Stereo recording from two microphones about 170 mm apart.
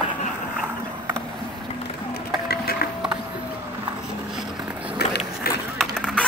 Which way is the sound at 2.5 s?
65° left (ahead or behind).